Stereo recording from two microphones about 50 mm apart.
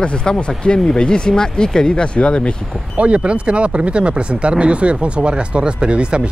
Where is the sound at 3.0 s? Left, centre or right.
Right.